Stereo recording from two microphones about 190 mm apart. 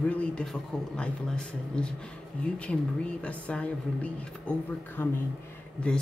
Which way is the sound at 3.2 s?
5° left (ahead or behind).